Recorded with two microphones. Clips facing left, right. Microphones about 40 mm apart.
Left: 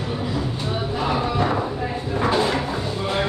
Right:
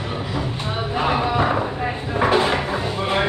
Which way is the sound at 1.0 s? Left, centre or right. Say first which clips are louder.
Right 3 dB; right.